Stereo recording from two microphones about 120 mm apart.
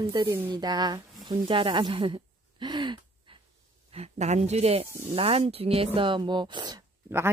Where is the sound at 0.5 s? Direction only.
35° right (ahead or behind).